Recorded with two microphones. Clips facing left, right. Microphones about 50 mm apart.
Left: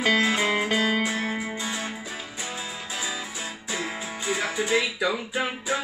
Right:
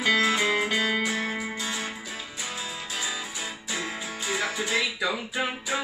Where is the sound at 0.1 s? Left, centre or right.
Left.